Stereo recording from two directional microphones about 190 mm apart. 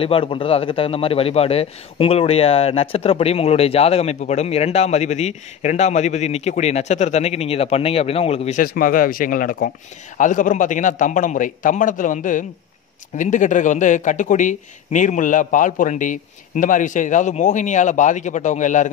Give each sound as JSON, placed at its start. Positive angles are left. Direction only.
{"t": 0.0, "sound": "a man's voice", "side_deg": 30}